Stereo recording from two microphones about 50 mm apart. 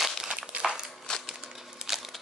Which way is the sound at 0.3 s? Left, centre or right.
Right.